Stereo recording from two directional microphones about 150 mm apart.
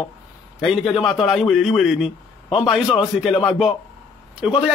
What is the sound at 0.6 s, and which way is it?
A man's voice, centre (ahead or behind).